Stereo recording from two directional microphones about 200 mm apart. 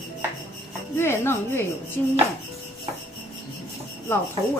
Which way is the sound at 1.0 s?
10° left (ahead or behind).